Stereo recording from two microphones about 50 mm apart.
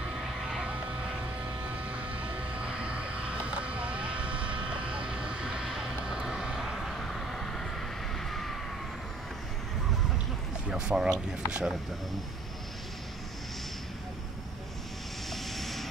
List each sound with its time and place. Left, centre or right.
0.4 s vehicle: centre
1.9 s vehicle: right; by 7.6 s centre
8.3 s emergency vehicle: centre
10.7 s speech: centre
15.2 s vehicle: centre